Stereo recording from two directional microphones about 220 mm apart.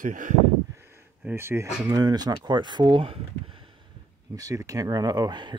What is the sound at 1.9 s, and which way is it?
Speech, 20° right (ahead or behind).